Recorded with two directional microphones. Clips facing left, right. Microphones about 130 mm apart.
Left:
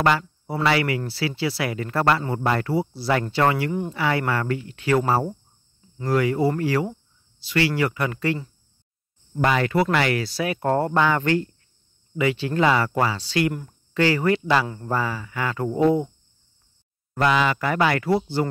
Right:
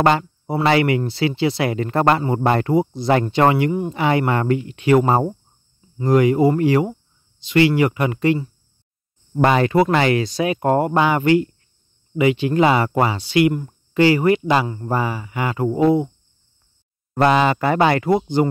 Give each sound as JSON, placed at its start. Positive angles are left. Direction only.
{"t": 0.0, "sound": "speech", "side_deg": -25}
{"t": 9.4, "sound": "speech", "side_deg": -30}
{"t": 17.1, "sound": "speech", "side_deg": -30}